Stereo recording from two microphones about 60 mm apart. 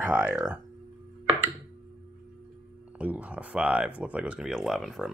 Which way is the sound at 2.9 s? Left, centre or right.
Right.